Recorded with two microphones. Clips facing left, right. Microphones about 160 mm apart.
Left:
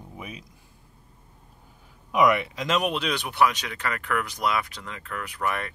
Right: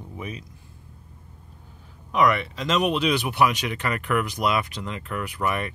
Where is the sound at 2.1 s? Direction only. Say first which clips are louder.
Even; 10° left (ahead or behind).